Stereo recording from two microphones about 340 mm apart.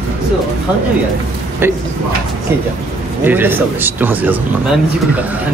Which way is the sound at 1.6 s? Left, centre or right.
Centre.